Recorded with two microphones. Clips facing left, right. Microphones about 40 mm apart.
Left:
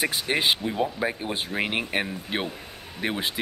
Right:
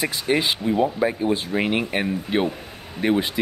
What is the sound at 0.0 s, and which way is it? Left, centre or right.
Speech, left.